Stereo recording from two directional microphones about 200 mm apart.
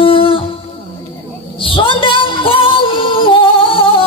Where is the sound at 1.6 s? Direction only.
25° left (ahead or behind).